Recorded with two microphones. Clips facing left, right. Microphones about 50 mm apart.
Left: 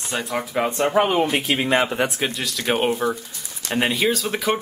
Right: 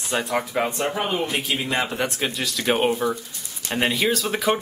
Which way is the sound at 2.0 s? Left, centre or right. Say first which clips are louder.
Left 2 dB; centre.